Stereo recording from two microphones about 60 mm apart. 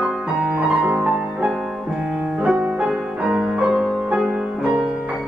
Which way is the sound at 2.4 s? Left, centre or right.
Centre.